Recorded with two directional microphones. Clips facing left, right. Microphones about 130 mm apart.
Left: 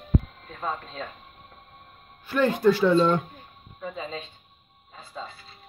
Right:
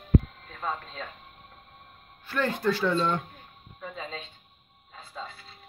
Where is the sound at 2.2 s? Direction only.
15° left (ahead or behind).